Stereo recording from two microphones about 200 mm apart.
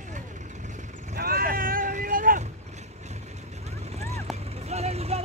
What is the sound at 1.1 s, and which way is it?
Boat, 50° right (ahead or behind).